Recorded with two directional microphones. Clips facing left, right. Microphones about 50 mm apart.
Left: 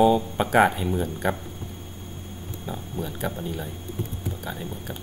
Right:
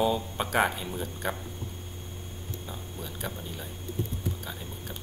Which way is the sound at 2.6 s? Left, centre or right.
Centre.